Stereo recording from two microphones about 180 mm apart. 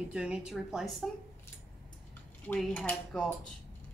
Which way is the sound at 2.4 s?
10° left (ahead or behind).